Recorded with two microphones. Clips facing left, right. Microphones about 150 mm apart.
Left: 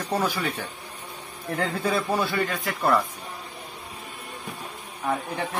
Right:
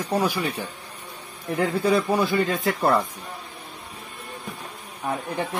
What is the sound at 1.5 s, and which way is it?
Speech, 10° right (ahead or behind).